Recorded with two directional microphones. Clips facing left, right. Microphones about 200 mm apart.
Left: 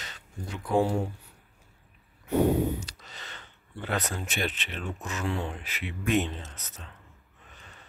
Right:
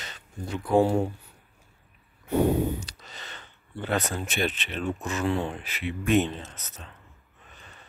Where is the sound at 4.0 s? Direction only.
25° right (ahead or behind).